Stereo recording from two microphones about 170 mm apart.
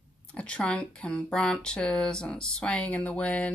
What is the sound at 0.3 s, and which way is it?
Speech, 5° left (ahead or behind).